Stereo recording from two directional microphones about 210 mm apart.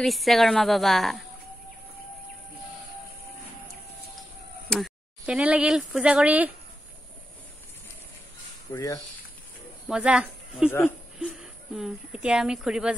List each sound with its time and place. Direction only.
0.0 s a woman's voice: centre (ahead or behind)
4.6 s speech: centre (ahead or behind)
8.7 s speech: 15° left (ahead or behind)
9.8 s a woman's voice: 5° right (ahead or behind)